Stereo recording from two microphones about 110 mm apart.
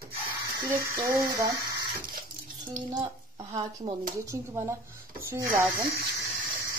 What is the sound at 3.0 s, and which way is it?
Speech, 35° right (ahead or behind).